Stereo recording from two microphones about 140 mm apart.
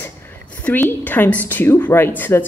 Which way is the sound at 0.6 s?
15° left (ahead or behind).